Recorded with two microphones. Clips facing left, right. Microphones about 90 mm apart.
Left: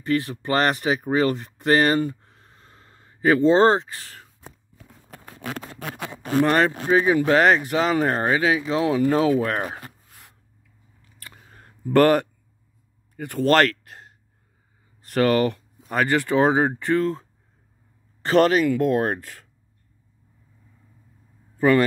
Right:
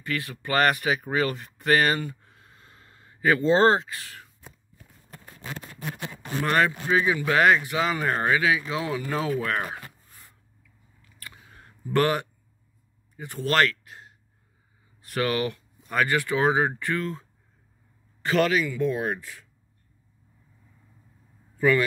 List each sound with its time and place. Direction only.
0.0 s speech: 30° left (ahead or behind)
4.4 s walk: 75° left (ahead or behind)
5.2 s a sound: 65° left (ahead or behind)
6.4 s speech: 35° left (ahead or behind)
8.8 s speech: 45° left (ahead or behind)
9.4 s speech: 30° left (ahead or behind)
11.1 s a sound: 35° left (ahead or behind)
13.1 s speech: 55° left (ahead or behind); by 18.6 s 40° left (ahead or behind)
18.6 s speech: 60° left (ahead or behind)
21.5 s speech: 40° left (ahead or behind)